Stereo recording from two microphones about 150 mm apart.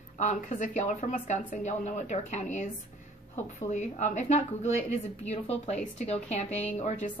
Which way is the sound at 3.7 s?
50° left (ahead or behind).